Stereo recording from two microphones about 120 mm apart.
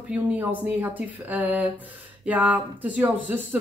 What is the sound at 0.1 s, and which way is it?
Speech, 15° right (ahead or behind).